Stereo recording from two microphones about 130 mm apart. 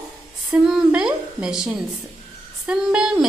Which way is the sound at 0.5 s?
5° right (ahead or behind).